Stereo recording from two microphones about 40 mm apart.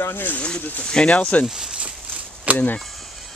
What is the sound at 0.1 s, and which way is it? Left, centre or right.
Speech, left.